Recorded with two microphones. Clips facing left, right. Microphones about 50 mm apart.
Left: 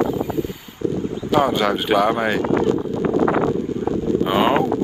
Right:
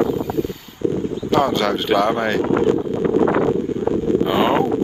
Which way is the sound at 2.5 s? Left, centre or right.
Right.